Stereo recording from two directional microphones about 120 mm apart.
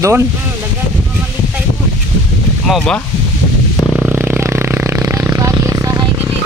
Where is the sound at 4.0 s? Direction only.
10° right (ahead or behind).